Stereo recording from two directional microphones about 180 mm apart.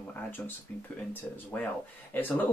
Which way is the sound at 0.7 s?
10° left (ahead or behind).